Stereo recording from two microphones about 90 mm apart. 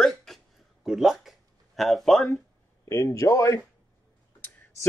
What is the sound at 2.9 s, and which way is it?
Speech, 35° left (ahead or behind).